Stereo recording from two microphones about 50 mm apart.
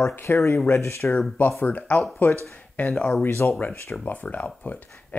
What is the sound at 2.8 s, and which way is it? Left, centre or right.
Speech, left.